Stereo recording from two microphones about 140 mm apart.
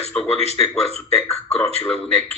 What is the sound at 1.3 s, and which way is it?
Speech, 50° left (ahead or behind).